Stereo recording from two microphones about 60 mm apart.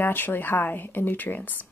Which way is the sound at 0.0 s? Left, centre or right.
Left.